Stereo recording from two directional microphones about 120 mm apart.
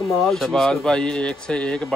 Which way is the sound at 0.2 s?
Centre (ahead or behind).